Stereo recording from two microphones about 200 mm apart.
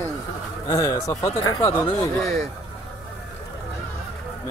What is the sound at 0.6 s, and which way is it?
Speech, 15° left (ahead or behind).